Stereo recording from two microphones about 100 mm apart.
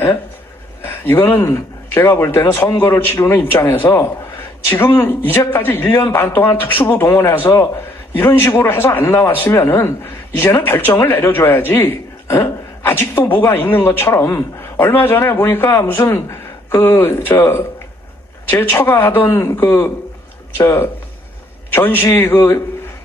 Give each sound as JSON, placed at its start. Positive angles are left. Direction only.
{"t": 0.8, "sound": "a man's voice", "side_deg": 20}